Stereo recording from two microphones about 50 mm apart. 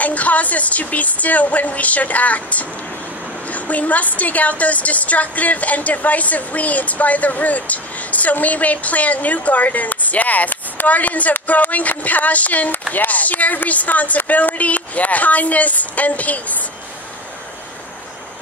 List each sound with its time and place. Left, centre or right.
0.0 s a woman's voice: left